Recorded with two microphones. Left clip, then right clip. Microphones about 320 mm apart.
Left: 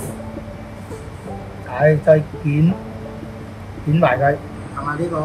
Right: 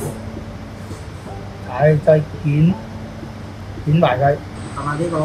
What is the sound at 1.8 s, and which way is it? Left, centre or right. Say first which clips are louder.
Speech: even; centre.